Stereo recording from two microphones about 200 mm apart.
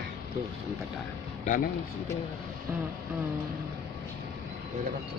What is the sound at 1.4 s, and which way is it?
Speech, 40° left (ahead or behind).